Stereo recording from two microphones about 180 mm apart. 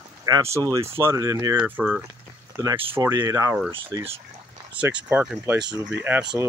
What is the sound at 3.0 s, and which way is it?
Speech, 20° right (ahead or behind).